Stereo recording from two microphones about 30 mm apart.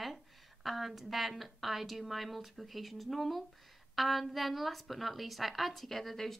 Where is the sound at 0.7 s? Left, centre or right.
Centre.